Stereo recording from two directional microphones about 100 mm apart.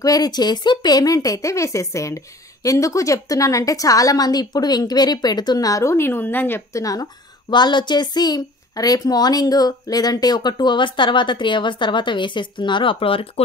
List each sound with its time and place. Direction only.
0.0 s speech: 40° left (ahead or behind); by 6.6 s 20° left (ahead or behind)
6.7 s a woman's voice: 35° left (ahead or behind); by 13.3 s 65° left (ahead or behind)